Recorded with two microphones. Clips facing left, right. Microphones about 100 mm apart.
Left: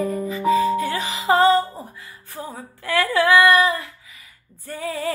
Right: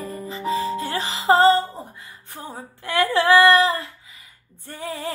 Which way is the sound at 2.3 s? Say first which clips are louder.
Left 2 dB; 25° right (ahead or behind).